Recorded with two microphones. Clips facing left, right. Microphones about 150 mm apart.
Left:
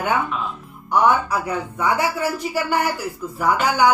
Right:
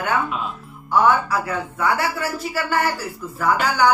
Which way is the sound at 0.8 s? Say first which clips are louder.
Even; 15° left (ahead or behind).